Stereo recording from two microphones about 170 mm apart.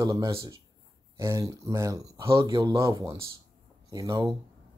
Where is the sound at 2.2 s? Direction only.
30° right (ahead or behind).